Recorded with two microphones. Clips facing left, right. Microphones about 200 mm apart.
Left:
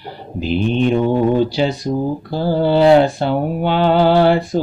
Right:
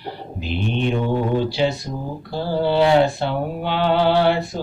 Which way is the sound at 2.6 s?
35° left (ahead or behind).